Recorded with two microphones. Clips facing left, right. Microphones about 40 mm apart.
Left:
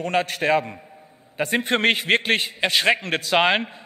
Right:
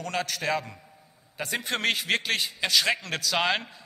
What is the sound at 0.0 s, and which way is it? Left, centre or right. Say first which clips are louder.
A man's voice: left 7 dB; left.